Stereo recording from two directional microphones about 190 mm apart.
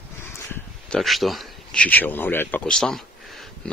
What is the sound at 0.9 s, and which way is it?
Speech, centre (ahead or behind).